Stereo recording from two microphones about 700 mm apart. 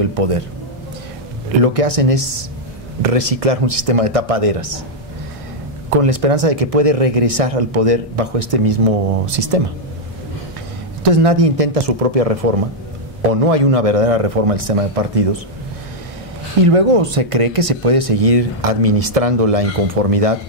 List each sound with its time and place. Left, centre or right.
1.6 s speech: right
5.9 s speech: right
11.1 s speech: right
13.5 s speech: right
16.6 s speech: right